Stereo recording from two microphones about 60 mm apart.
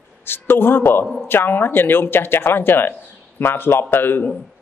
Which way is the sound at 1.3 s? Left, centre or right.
Left.